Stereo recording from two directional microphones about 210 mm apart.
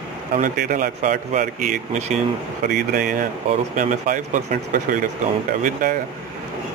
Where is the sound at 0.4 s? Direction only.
40° right (ahead or behind).